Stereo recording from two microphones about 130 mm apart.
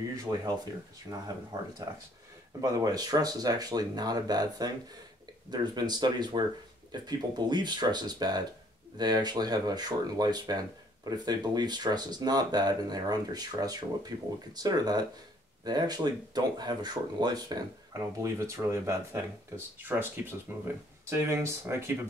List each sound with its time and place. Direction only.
0.1 s speech: 30° right (ahead or behind)